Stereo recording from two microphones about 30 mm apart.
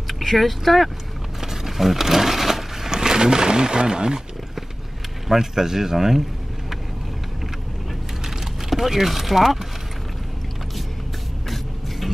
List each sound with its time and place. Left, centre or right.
0.2 s speech: centre
1.4 s a sound: centre
2.9 s speech: right
5.3 s speech: centre
8.6 s speech: centre
11.4 s a sound: centre